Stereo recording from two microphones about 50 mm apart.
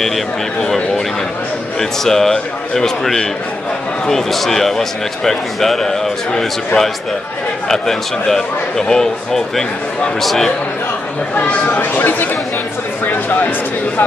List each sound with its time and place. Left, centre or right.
1.8 s speech: centre
11.3 s speech: left